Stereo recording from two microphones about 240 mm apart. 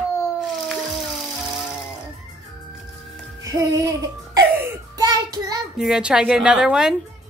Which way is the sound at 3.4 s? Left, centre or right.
Centre.